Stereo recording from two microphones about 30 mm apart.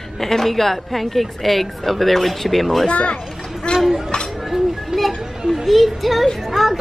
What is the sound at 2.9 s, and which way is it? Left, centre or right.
Speech, left.